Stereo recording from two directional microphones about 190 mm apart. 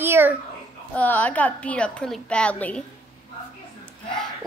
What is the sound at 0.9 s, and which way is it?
A woman's voice, 10° left (ahead or behind).